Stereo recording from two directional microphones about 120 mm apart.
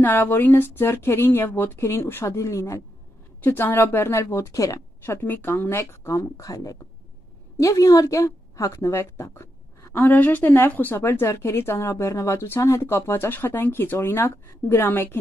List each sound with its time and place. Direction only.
0.0 s speech: 15° left (ahead or behind)